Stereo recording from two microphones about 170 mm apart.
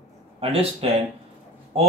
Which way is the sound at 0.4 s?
35° right (ahead or behind).